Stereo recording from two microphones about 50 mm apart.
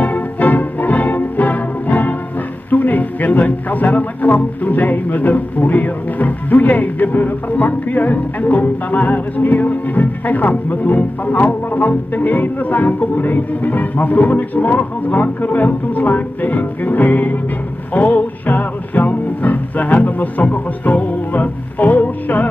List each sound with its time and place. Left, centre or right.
0.0 s music: left
2.7 s speech: left
17.9 s music: left